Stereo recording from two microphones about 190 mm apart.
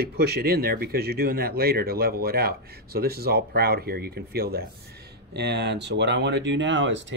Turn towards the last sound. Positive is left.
turn(degrees=-70)  # may be behind; listen again after turning